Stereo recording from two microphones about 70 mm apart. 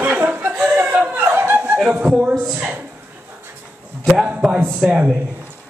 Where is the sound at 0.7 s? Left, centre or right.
Right.